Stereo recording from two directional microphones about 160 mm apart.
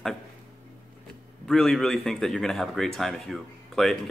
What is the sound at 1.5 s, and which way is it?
A man's voice, 5° left (ahead or behind).